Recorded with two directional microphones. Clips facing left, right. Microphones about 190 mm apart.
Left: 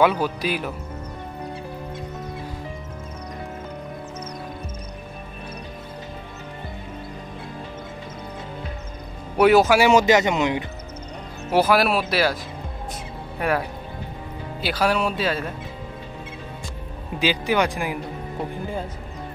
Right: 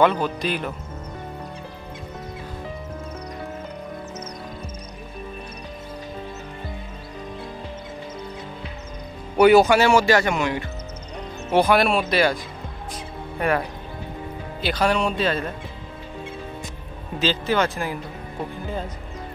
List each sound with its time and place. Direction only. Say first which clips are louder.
0.0 s speech: even; 5° left (ahead or behind)
9.4 s speech: right 2 dB; centre (ahead or behind)
9.8 s a man's voice: left 1 dB; 20° left (ahead or behind)
11.5 s speech: right 1 dB; 5° left (ahead or behind)
13.4 s speech: right 1 dB; 5° left (ahead or behind)
17.2 s speech: even; 15° left (ahead or behind)